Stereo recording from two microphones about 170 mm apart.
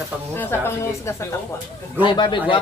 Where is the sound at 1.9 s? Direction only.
25° left (ahead or behind).